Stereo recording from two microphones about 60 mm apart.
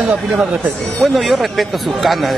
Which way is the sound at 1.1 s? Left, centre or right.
Centre.